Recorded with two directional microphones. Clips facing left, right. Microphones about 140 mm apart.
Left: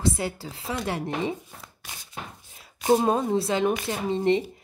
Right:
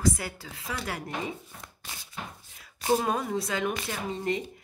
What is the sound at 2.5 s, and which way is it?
A woman's voice, 25° left (ahead or behind).